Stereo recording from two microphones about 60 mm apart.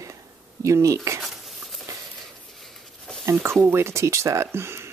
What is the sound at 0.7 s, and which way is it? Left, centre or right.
Speech, right.